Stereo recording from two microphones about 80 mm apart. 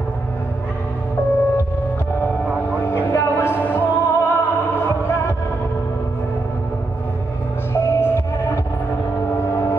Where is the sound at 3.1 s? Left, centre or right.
Left.